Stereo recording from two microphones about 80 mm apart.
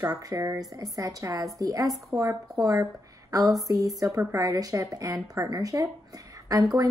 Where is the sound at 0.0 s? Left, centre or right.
Right.